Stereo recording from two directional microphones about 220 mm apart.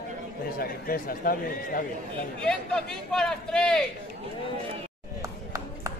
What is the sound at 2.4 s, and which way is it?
Speech, centre (ahead or behind).